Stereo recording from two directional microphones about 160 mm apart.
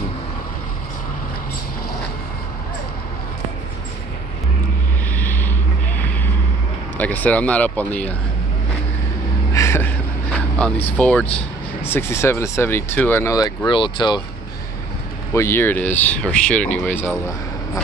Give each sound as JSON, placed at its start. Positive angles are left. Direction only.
{"t": 5.1, "sound": "vehicle", "side_deg": 10}
{"t": 7.0, "sound": "speech", "side_deg": 10}
{"t": 9.5, "sound": "a sound", "side_deg": 15}
{"t": 10.9, "sound": "speech", "side_deg": 10}
{"t": 13.7, "sound": "speech", "side_deg": 30}
{"t": 15.3, "sound": "speech", "side_deg": 15}